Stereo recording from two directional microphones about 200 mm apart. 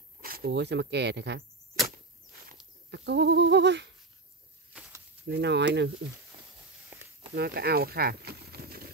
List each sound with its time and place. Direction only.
0.2 s speech: 50° right (ahead or behind)
2.9 s goat: 60° right (ahead or behind)
5.2 s goat: 60° right (ahead or behind)
7.3 s speech: 50° right (ahead or behind)